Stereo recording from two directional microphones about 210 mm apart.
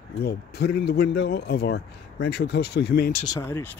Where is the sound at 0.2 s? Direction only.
50° left (ahead or behind).